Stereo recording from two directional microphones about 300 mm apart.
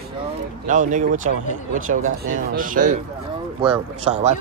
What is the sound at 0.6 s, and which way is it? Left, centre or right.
Speech, right.